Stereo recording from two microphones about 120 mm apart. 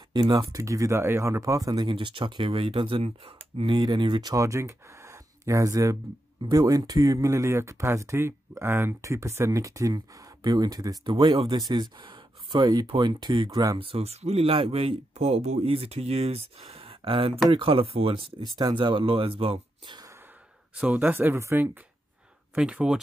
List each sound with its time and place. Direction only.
0.1 s speech: 35° right (ahead or behind); by 3.7 s 55° right (ahead or behind)
3.7 s speech: 35° right (ahead or behind)
13.5 s speech: 30° right (ahead or behind)
13.7 s speech: 50° right (ahead or behind)
18.6 s speech: 35° right (ahead or behind)
20.7 s speech: 15° right (ahead or behind)
22.6 s speech: 5° right (ahead or behind)